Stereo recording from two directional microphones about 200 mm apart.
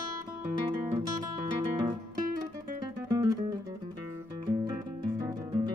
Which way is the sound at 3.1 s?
20° right (ahead or behind).